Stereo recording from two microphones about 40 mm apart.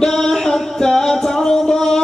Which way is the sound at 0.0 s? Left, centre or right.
Centre.